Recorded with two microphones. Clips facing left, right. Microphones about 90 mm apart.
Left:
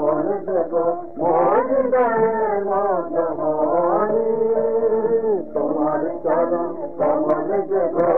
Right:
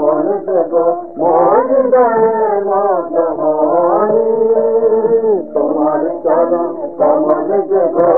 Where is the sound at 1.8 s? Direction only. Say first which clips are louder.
Right 7 dB; 30° right (ahead or behind).